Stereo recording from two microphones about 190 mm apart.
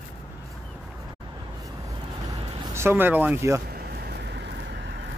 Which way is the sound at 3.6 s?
55° right (ahead or behind).